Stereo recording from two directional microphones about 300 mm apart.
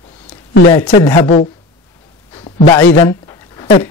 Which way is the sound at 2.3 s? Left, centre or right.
Centre.